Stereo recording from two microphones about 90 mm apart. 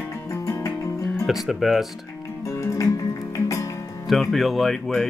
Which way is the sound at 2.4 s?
35° left (ahead or behind).